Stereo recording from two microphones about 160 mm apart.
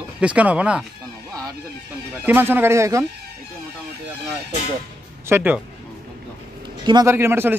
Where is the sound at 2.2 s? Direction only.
10° right (ahead or behind).